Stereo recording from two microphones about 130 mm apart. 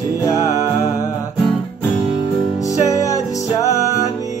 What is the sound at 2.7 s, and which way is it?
Music, 25° left (ahead or behind).